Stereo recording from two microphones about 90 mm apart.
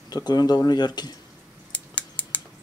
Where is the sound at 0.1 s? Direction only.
50° left (ahead or behind).